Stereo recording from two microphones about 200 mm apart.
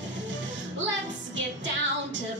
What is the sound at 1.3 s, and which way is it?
Music, 65° right (ahead or behind).